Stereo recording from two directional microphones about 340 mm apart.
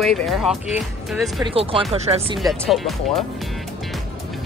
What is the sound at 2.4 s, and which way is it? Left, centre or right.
Speech, centre.